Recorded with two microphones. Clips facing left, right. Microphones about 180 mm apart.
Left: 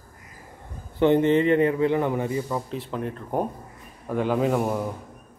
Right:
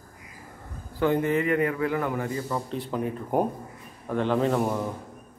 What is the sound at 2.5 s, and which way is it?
Speech, centre (ahead or behind).